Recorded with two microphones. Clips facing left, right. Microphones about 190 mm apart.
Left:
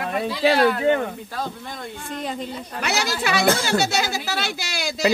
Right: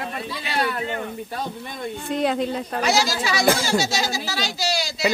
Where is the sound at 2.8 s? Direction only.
60° left (ahead or behind).